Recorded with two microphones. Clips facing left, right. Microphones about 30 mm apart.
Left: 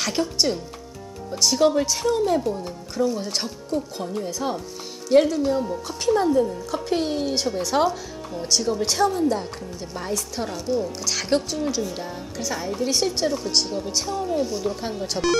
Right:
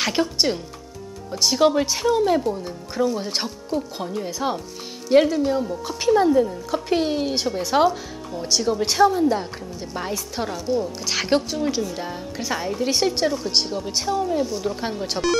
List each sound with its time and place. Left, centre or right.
0.0 s a woman's voice: centre
11.1 s a woman's voice: centre
14.4 s speech: centre
14.8 s speech: right